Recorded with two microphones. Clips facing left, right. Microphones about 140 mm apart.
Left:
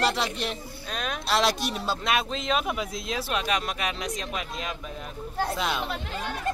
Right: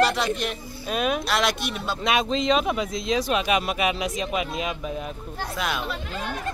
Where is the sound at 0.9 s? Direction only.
10° right (ahead or behind).